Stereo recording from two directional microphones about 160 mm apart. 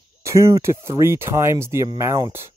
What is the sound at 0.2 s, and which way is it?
Speech, 20° right (ahead or behind).